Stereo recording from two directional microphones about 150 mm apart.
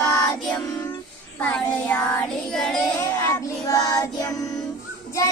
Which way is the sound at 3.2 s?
20° left (ahead or behind).